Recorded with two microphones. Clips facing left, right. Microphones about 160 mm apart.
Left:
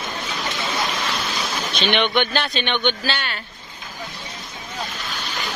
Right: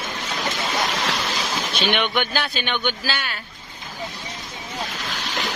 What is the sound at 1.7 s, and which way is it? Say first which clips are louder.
Speech: left 3 dB; 10° right (ahead or behind).